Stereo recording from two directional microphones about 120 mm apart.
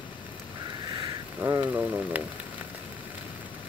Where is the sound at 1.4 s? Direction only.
20° right (ahead or behind).